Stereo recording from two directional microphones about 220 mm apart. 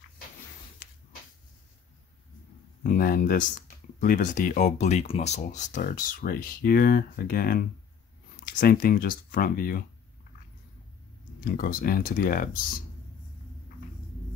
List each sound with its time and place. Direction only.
2.8 s speech: 40° left (ahead or behind)
11.4 s speech: 40° left (ahead or behind)